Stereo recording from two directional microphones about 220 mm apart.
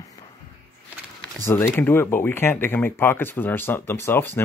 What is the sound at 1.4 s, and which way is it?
Speech, 10° left (ahead or behind).